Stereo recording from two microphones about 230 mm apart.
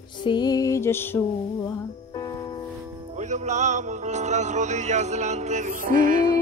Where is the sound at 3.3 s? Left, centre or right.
Right.